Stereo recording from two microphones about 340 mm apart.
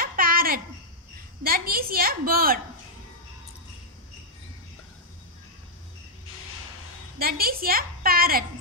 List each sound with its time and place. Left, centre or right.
0.0 s a sound: right
1.4 s a woman's voice: right
7.2 s a woman's voice: right